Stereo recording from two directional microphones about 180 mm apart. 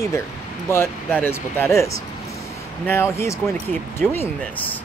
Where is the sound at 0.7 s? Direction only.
10° left (ahead or behind).